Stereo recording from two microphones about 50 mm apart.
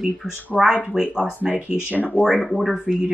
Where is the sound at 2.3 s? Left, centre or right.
Centre.